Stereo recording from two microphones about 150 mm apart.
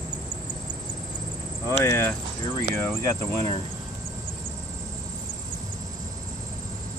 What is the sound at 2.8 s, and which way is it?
Speech, 15° left (ahead or behind).